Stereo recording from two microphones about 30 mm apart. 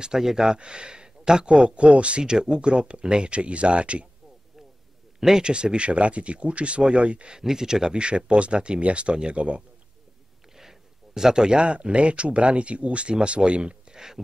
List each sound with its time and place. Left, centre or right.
0.0 s speech: centre
0.6 s speech: right
1.8 s speech: right
2.2 s speech: right
2.7 s speech: right
5.4 s speech: right
7.2 s speech: centre
8.3 s speech: right
10.5 s speech: centre; by 13.9 s right
13.9 s speech: centre